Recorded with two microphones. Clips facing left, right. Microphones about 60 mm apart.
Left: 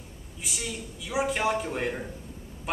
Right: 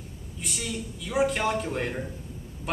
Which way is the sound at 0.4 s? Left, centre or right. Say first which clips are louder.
Right 2 dB; centre.